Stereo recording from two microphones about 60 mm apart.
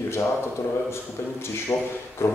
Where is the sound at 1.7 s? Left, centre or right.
Left.